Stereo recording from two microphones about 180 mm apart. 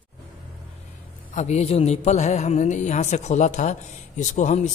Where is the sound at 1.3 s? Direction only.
40° left (ahead or behind).